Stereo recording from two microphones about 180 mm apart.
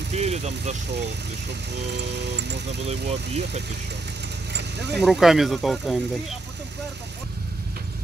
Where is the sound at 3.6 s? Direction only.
70° right (ahead or behind).